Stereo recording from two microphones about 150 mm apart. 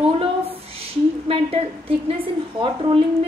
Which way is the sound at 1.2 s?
40° right (ahead or behind).